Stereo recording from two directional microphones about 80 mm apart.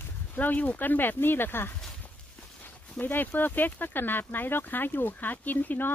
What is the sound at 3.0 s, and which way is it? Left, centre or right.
Speech, left.